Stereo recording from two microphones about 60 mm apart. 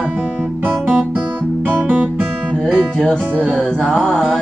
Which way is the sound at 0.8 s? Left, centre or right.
Right.